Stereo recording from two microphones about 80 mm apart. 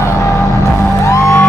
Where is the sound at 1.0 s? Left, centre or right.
Left.